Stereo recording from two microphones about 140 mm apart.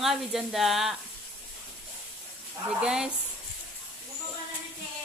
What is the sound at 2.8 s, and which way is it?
Speech, 5° right (ahead or behind).